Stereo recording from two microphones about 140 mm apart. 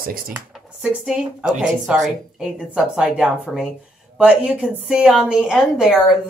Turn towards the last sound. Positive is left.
turn(degrees=-5)  # may be behind; listen again after turning